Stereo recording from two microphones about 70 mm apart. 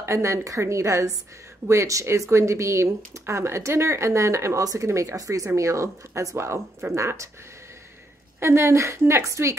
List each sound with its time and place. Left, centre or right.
0.0 s speech: right
8.4 s a woman's voice: right